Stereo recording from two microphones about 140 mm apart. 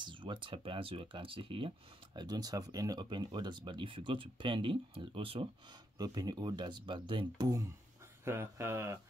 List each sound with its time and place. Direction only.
0.0 s speech: 35° right (ahead or behind)
2.1 s speech: 30° right (ahead or behind)
5.9 s speech: 30° right (ahead or behind)